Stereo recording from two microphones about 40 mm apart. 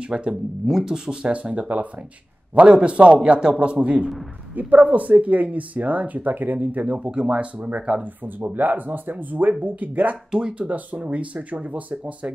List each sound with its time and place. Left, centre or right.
0.0 s a man's voice: right
0.7 s speech: centre
1.2 s speech: right
2.7 s a man's voice: right
4.6 s speech: right
7.0 s a man's voice: right
8.5 s speech: right